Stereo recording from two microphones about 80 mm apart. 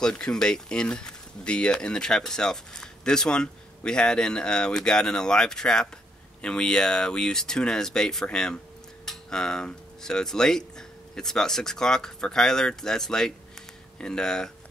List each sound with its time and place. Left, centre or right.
0.0 s speech: centre